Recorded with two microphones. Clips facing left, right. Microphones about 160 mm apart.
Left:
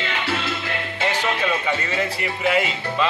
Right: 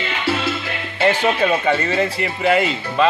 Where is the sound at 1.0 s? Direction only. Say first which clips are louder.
Right 7 dB; 60° right (ahead or behind).